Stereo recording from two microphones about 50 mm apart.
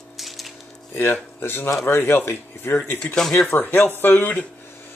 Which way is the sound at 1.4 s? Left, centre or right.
Left.